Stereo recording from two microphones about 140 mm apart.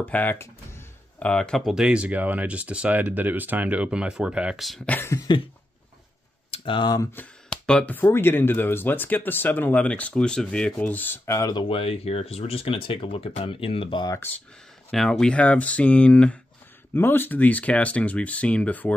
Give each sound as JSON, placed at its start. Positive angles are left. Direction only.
{"t": 0.0, "sound": "music", "side_deg": 15}
{"t": 1.3, "sound": "speech", "side_deg": 5}
{"t": 4.9, "sound": "a sound", "side_deg": 20}
{"t": 6.5, "sound": "speech", "side_deg": 35}
{"t": 7.1, "sound": "speech", "side_deg": 10}
{"t": 11.3, "sound": "a sound", "side_deg": 25}
{"t": 11.6, "sound": "speech", "side_deg": 40}
{"t": 14.2, "sound": "speech", "side_deg": 15}
{"t": 14.9, "sound": "speech", "side_deg": 5}